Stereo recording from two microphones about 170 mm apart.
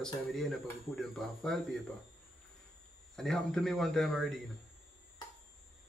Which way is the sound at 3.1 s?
5° left (ahead or behind).